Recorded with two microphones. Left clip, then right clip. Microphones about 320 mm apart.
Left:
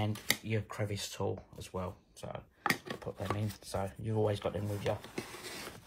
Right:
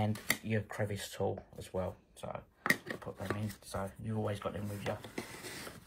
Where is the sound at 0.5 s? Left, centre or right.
Centre.